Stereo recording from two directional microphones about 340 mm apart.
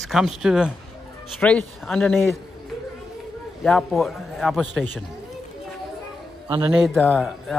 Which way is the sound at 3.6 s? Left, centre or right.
Centre.